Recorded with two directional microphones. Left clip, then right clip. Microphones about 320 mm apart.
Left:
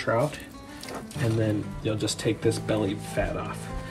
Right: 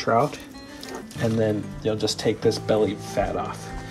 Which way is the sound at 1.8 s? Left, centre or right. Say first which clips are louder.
Right 6 dB; centre.